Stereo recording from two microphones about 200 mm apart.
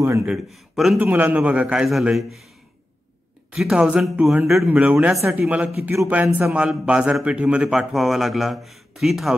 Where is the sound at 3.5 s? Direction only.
5° right (ahead or behind).